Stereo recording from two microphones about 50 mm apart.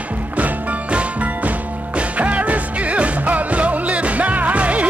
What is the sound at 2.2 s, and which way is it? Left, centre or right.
Music, right.